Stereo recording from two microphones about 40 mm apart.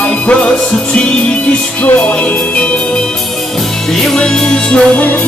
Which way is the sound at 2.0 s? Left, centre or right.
Left.